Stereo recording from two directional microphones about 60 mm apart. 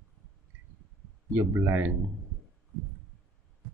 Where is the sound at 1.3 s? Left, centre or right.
Right.